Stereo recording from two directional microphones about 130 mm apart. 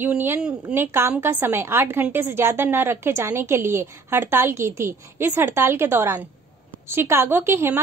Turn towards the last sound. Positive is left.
turn(degrees=-20)  # may be behind; listen again after turning